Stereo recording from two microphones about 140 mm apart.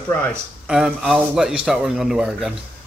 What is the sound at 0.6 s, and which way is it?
Speech, 5° right (ahead or behind).